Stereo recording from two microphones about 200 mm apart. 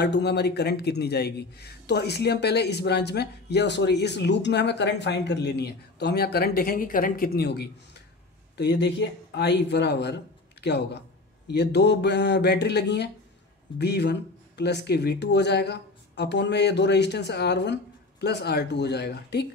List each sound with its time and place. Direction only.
0.0 s a man's voice: 55° left (ahead or behind)